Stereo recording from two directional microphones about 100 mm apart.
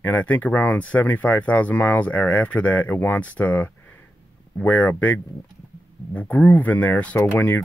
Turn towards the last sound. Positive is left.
turn(degrees=20)  # may be behind; listen again after turning